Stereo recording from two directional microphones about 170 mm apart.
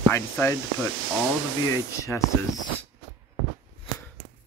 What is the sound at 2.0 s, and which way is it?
Speech, 20° left (ahead or behind).